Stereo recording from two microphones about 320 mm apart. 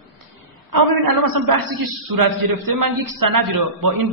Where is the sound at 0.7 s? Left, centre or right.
Right.